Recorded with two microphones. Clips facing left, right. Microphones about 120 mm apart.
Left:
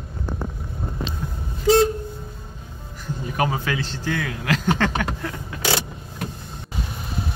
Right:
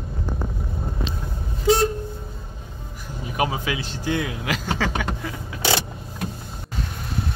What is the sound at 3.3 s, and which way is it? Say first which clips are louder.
Speech: left 1 dB; 10° right (ahead or behind).